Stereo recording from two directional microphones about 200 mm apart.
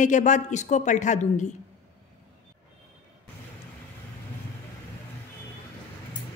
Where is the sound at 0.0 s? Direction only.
40° left (ahead or behind).